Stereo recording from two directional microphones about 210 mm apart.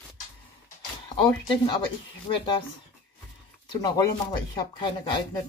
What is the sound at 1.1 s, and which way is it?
Speech, 25° left (ahead or behind).